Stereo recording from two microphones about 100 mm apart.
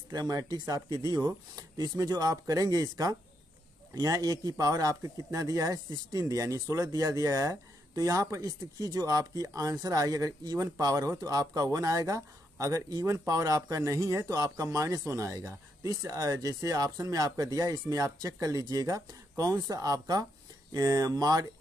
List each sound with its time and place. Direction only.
0.1 s speech: 40° right (ahead or behind)